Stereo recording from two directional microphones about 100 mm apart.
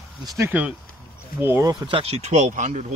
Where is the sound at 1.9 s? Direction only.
85° right.